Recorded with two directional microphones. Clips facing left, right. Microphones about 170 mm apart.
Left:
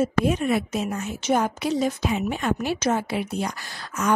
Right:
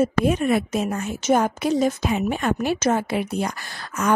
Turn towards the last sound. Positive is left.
turn(degrees=-55)  # may be behind; listen again after turning